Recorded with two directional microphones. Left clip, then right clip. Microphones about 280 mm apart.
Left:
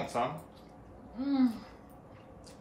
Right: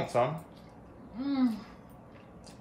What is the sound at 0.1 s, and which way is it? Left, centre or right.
Speech, right.